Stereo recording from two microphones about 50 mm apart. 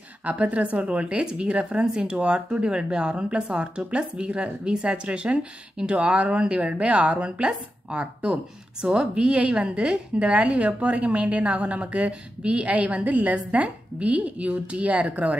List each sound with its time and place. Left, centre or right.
0.2 s speech: right